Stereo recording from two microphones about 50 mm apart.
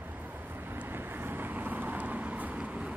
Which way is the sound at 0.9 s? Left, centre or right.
Right.